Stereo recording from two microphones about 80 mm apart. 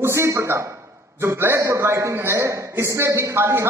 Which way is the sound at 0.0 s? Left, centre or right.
Right.